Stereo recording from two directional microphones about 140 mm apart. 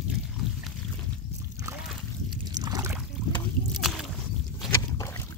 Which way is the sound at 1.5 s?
20° right (ahead or behind).